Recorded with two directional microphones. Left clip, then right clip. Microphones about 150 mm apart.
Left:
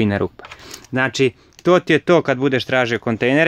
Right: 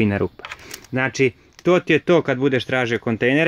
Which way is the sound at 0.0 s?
5° right (ahead or behind).